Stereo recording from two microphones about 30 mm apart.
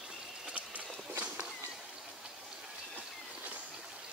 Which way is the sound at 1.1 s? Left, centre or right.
Right.